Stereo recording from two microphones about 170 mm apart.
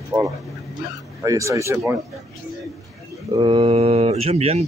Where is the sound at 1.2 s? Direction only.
20° right (ahead or behind).